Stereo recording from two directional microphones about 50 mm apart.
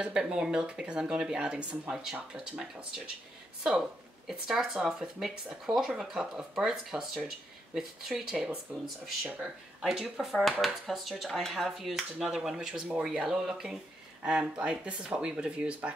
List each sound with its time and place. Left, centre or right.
0.0 s speech: centre
1.9 s speech: centre
4.3 s speech: centre
12.6 s speech: right
13.1 s speech: centre
14.5 s speech: right